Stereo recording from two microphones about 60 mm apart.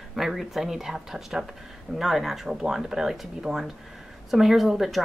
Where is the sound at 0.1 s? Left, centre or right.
Centre.